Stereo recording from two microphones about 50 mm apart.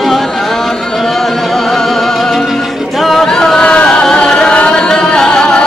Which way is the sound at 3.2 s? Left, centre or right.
Centre.